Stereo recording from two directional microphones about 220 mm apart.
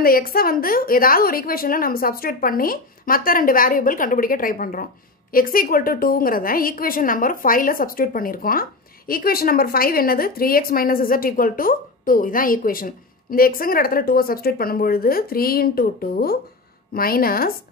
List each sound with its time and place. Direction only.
0.0 s a woman's voice: 40° left (ahead or behind)